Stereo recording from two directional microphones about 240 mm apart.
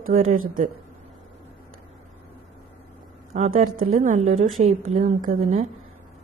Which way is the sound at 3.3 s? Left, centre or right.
Right.